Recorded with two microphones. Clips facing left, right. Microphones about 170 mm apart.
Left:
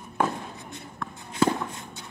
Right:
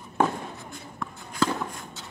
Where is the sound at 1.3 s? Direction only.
25° left (ahead or behind).